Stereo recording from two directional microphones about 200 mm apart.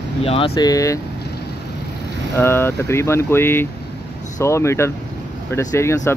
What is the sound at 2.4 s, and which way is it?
Speech, 10° left (ahead or behind).